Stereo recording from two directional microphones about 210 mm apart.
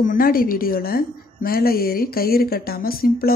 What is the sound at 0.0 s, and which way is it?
A woman's voice, 40° left (ahead or behind).